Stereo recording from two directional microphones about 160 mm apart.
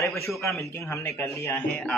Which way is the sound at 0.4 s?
20° left (ahead or behind).